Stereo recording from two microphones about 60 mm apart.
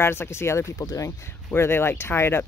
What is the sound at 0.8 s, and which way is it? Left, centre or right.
Speech, left.